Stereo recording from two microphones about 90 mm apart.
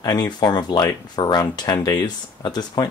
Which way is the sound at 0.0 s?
50° left (ahead or behind).